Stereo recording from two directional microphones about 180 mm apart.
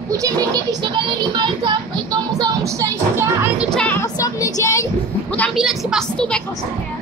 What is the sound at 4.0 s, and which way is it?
Speech, 20° left (ahead or behind).